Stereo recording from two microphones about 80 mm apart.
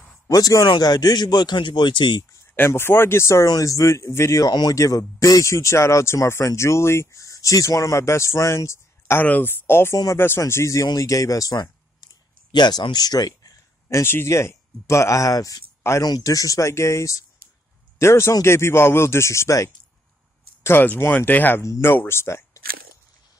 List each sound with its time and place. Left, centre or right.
0.3 s a man's voice: left
2.5 s speech: left
3.4 s speech: left
4.5 s a man's voice: left
4.7 s speech: left
10.5 s speech: left
13.8 s a man's voice: left
20.6 s speech: left